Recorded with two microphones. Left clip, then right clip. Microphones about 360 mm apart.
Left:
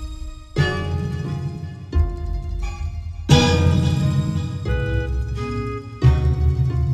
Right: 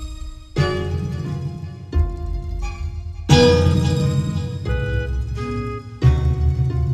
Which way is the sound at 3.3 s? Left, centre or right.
Centre.